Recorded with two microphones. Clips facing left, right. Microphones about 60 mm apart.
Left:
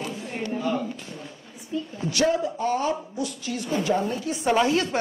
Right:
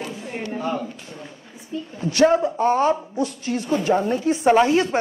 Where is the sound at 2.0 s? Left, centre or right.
Right.